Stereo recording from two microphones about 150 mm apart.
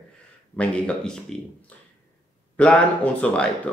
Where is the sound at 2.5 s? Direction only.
10° left (ahead or behind).